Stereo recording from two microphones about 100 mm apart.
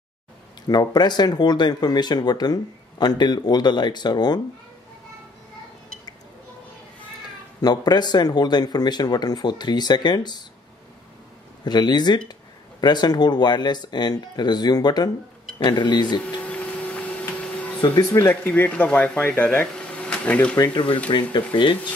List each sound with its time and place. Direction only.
0.7 s speech: 45° left (ahead or behind)
7.6 s speech: 45° left (ahead or behind)
11.6 s speech: 45° left (ahead or behind)
16.3 s printer: 15° left (ahead or behind)
17.7 s speech: 55° left (ahead or behind)
18.1 s speech: 20° left (ahead or behind)
20.5 s speech: 40° left (ahead or behind)